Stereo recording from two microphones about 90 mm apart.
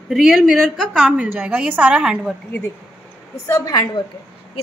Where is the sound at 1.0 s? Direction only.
15° right (ahead or behind).